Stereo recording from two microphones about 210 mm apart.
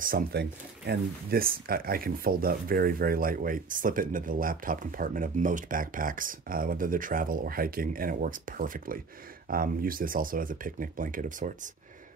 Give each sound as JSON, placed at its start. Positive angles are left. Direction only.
{"t": 0.0, "sound": "speech", "side_deg": -45}